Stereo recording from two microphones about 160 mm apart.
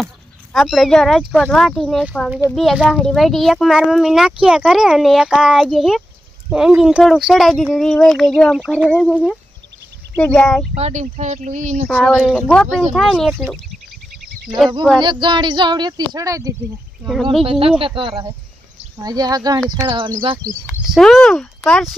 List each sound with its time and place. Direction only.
0.0 s speech: 5° left (ahead or behind)
8.9 s speech: 5° left (ahead or behind)
10.8 s speech: 50° right (ahead or behind)
11.9 s speech: 5° left (ahead or behind)
15.0 s a woman's voice: 30° right (ahead or behind)
17.1 s speech: centre (ahead or behind)
17.4 s a woman's voice: 35° right (ahead or behind)
20.4 s speech: 5° left (ahead or behind)